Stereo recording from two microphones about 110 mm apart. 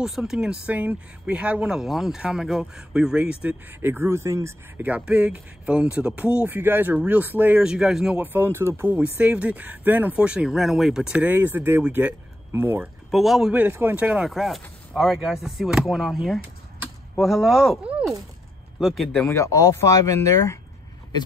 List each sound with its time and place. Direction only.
0.0 s speech: 5° right (ahead or behind)
3.4 s speech: 20° right (ahead or behind)
4.8 s speech: 10° right (ahead or behind)
7.6 s speech: 5° right (ahead or behind)
8.2 s speech: 20° right (ahead or behind)
9.2 s speech: 10° right (ahead or behind)
13.1 s speech: centre (ahead or behind)
13.5 s speech: 20° right (ahead or behind); by 19.0 s centre (ahead or behind)
19.2 s speech: 25° left (ahead or behind)